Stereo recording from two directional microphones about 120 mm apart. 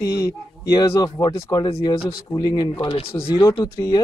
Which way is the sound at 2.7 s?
50° left (ahead or behind).